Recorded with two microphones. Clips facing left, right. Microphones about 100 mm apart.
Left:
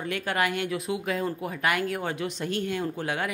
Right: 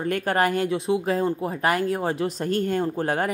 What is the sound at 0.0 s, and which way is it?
A woman's voice, 45° right (ahead or behind).